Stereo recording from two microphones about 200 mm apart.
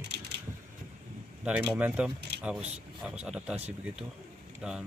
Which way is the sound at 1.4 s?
5° right (ahead or behind).